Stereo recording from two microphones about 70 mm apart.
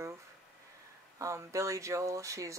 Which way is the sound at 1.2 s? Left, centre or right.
Right.